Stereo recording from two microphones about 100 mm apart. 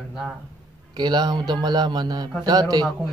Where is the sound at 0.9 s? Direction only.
45° right (ahead or behind).